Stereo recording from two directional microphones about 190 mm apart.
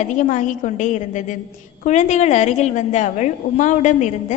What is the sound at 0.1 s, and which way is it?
A woman's voice, 40° left (ahead or behind).